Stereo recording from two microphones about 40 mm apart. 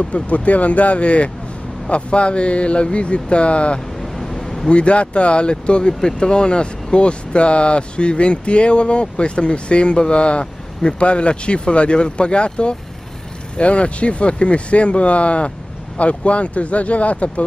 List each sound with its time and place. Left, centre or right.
0.0 s speech: left
4.0 s vehicle: centre
4.6 s speech: left